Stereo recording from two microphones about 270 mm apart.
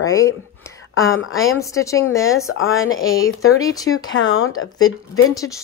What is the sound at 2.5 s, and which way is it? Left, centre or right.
Speech, left.